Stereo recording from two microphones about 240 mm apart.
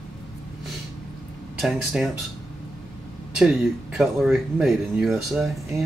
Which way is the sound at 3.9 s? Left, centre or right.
Centre.